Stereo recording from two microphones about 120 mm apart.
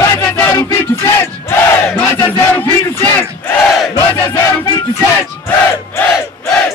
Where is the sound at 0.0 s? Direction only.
30° left (ahead or behind).